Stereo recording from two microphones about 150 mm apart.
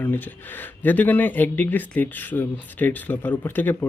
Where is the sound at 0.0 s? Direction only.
10° left (ahead or behind).